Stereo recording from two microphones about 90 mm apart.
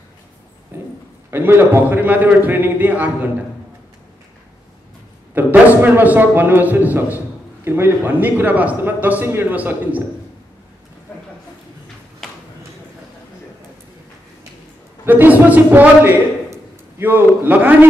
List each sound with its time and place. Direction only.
0.7 s a sound: 20° right (ahead or behind)
1.3 s a man's voice: 25° right (ahead or behind)
5.3 s a man's voice: 20° right (ahead or behind)
12.2 s a sound: 5° left (ahead or behind)
15.0 s a man's voice: 20° right (ahead or behind)
17.4 s a man's voice: 20° right (ahead or behind)